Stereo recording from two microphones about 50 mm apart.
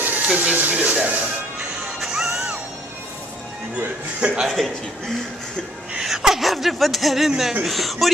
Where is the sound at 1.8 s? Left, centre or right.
Centre.